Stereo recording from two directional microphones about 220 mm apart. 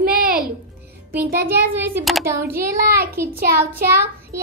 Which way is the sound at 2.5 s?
45° right (ahead or behind).